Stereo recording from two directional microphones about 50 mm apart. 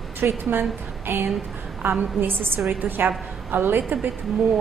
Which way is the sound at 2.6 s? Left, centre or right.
Right.